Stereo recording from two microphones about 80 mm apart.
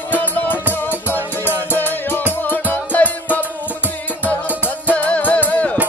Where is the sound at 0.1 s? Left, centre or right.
Left.